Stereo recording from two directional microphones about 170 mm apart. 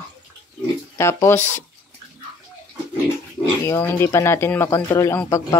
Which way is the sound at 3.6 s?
15° left (ahead or behind).